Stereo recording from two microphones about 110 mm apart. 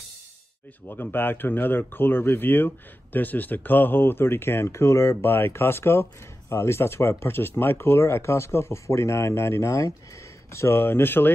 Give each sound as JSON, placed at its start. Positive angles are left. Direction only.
{"t": 0.8, "sound": "speech", "side_deg": 20}